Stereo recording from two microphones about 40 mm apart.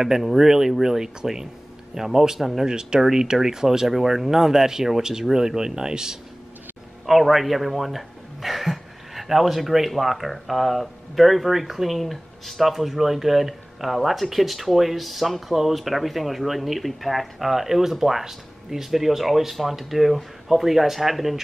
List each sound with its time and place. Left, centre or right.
0.0 s speech: centre
2.7 s speech: centre
7.1 s speech: centre